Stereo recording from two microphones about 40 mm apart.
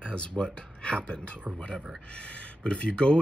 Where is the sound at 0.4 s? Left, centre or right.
Left.